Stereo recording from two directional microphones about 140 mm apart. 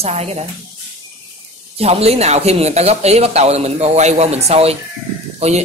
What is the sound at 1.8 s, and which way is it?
Speech, 45° right (ahead or behind).